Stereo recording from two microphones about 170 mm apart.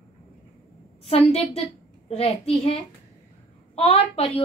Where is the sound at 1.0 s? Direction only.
35° left (ahead or behind).